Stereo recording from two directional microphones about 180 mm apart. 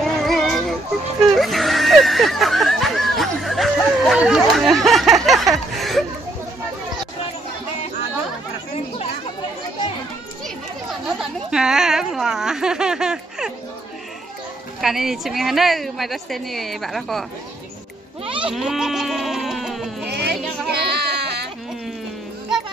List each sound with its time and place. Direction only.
0.0 s children playing: centre (ahead or behind)
1.3 s snicker: centre (ahead or behind)
5.8 s a sound: centre (ahead or behind)
11.1 s a sound: 5° right (ahead or behind)
14.8 s speech: centre (ahead or behind)
18.2 s sheep: 30° right (ahead or behind)
18.5 s goat: centre (ahead or behind)
20.1 s a sound: 65° right (ahead or behind)
20.7 s baby cry: 65° right (ahead or behind)